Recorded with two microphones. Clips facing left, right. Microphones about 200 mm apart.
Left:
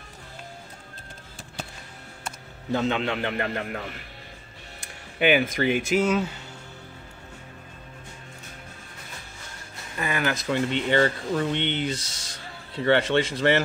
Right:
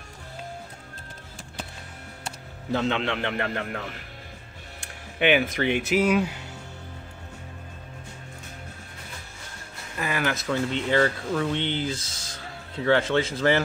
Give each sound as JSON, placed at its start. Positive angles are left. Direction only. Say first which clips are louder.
{"t": 2.7, "sound": "speech", "louder": "left 1 dB", "side_deg": 0}
{"t": 5.2, "sound": "speech", "louder": "left 1 dB", "side_deg": 0}
{"t": 9.9, "sound": "speech", "louder": "even", "side_deg": 0}
{"t": 12.0, "sound": "speech", "louder": "right 1 dB", "side_deg": -90}
{"t": 12.7, "sound": "speech", "louder": "left 1 dB", "side_deg": 0}